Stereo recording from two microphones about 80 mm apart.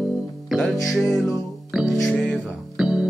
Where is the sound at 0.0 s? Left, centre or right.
Centre.